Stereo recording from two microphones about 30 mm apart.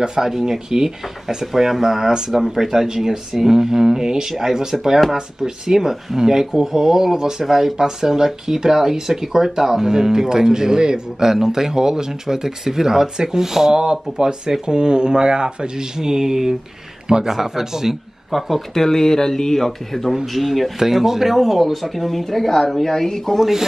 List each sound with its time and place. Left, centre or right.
0.2 s speech: centre
1.4 s speech: centre
18.3 s speech: centre
18.7 s speech: centre
20.8 s speech: centre